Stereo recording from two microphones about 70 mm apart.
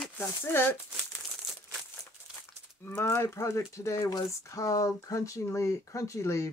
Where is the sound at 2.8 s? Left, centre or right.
Left.